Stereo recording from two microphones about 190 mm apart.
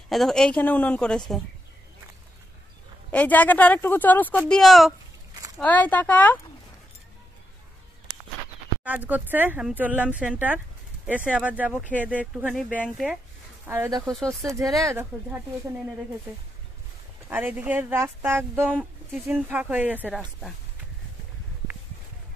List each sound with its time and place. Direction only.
0.1 s a woman's voice: centre (ahead or behind)
3.1 s a woman's voice: 10° left (ahead or behind)
8.8 s a woman's voice: 10° right (ahead or behind)
13.7 s speech: 15° right (ahead or behind)
17.3 s speech: 10° right (ahead or behind)
20.1 s a woman's voice: 5° left (ahead or behind)